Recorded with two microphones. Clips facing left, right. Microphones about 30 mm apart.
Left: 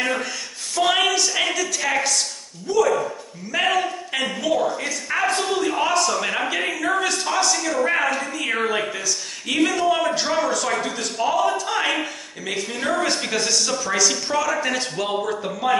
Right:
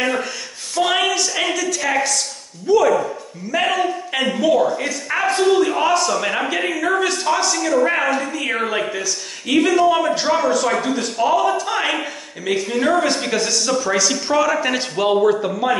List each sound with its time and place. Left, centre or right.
0.0 s a sound: centre
2.7 s a man's voice: centre
3.5 s a man's voice: centre